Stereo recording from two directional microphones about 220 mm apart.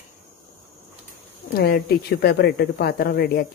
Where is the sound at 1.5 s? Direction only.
45° left (ahead or behind).